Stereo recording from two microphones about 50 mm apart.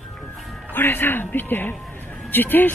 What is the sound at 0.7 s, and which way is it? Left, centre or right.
Speech, left.